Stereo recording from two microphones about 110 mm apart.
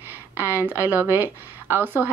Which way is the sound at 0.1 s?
20° right (ahead or behind).